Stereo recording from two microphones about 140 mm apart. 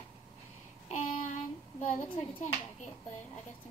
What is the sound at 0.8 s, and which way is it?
Clapping, 60° left (ahead or behind).